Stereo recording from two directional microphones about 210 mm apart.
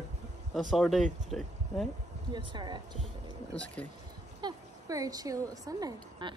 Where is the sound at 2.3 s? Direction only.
20° right (ahead or behind).